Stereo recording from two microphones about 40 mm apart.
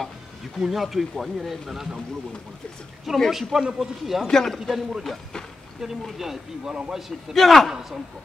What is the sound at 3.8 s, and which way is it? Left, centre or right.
Speech, centre.